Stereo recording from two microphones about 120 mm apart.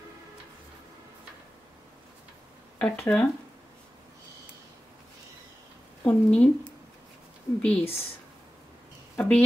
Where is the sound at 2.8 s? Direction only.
10° left (ahead or behind).